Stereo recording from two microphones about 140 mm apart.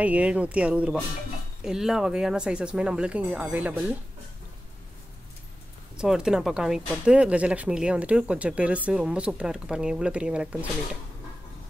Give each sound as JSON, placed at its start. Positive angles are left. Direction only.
{"t": 0.0, "sound": "speech", "side_deg": -10}
{"t": 5.9, "sound": "speech", "side_deg": -5}